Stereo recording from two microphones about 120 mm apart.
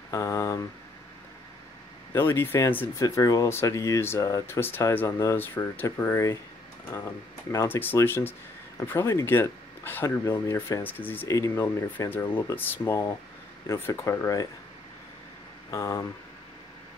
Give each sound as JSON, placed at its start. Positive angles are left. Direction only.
{"t": 0.1, "sound": "speech", "side_deg": 25}
{"t": 2.1, "sound": "speech", "side_deg": 20}
{"t": 7.5, "sound": "speech", "side_deg": 15}
{"t": 11.2, "sound": "speech", "side_deg": 25}
{"t": 15.7, "sound": "speech", "side_deg": 25}